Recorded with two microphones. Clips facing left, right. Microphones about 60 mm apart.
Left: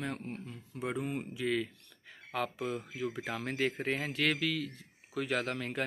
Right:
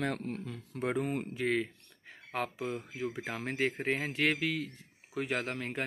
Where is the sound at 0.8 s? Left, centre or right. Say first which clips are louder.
Right 3 dB; right.